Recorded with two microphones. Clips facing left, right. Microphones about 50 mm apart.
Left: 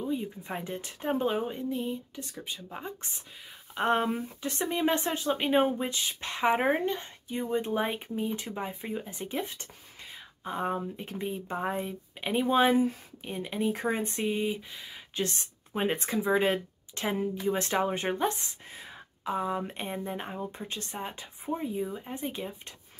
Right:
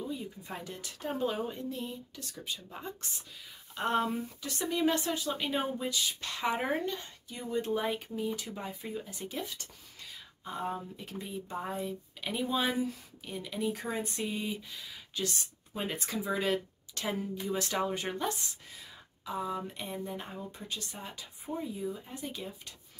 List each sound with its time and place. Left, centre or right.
0.1 s speech: left
15.1 s speech: left